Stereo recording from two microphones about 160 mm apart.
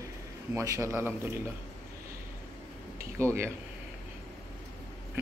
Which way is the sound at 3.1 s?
15° right (ahead or behind).